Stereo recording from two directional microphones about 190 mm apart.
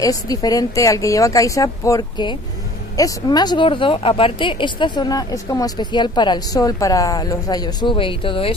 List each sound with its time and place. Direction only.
0.0 s a woman's voice: 20° left (ahead or behind)